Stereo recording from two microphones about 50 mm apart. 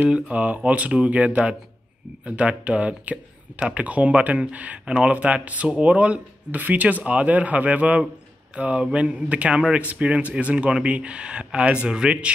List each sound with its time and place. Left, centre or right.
0.3 s speech: right